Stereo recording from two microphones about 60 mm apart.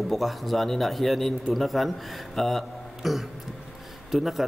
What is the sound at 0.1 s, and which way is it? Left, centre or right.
A man's voice, centre.